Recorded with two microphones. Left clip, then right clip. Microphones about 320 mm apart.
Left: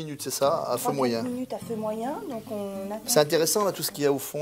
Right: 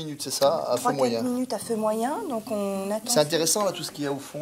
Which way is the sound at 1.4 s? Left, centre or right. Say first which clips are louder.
Right 5 dB; centre.